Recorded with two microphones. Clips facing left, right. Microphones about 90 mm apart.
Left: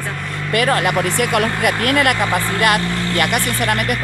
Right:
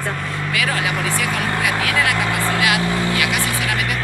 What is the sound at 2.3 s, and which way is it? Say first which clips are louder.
Speech: left 3 dB; 5° right (ahead or behind).